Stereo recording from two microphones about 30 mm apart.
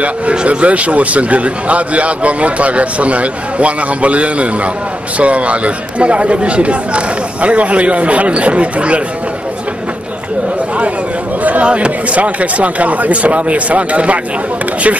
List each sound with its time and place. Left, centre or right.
0.3 s a man's voice: right
11.6 s a man's voice: right